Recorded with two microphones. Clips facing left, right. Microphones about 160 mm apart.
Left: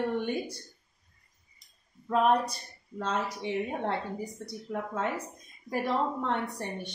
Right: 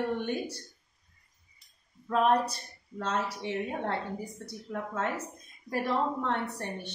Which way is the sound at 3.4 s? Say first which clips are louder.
Left 1 dB; 15° left (ahead or behind).